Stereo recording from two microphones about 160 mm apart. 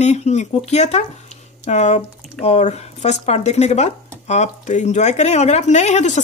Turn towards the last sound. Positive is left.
turn(degrees=45)  # may be behind; listen again after turning